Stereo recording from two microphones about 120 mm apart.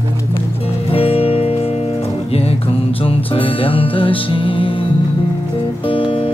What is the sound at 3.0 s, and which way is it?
Music, 50° left (ahead or behind).